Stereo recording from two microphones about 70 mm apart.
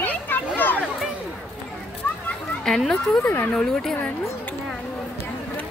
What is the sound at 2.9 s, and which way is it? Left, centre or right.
Speech, centre.